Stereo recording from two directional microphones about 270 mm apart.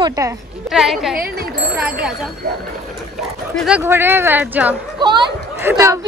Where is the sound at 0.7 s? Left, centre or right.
Centre.